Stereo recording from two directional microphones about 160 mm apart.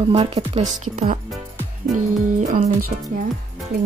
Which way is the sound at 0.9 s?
55° right (ahead or behind).